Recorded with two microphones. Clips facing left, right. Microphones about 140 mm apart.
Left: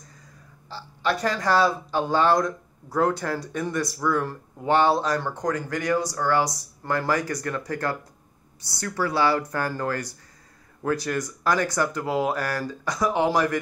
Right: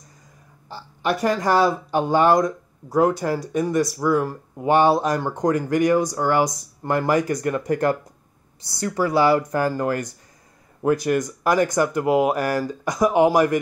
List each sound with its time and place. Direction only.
0.7 s speech: 15° right (ahead or behind)